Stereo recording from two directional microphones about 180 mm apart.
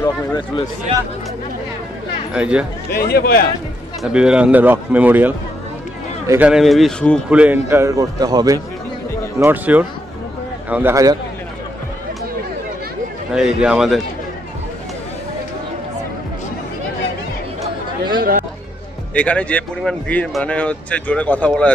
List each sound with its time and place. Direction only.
0.0 s speech: 25° left (ahead or behind)
2.3 s a man's voice: 5° right (ahead or behind)
3.0 s speech: 60° left (ahead or behind)
4.0 s a man's voice: 5° right (ahead or behind); by 8.5 s 20° right (ahead or behind)
9.4 s a man's voice: 10° right (ahead or behind)
13.3 s speech: 5° right (ahead or behind)
19.1 s speech: 5° left (ahead or behind)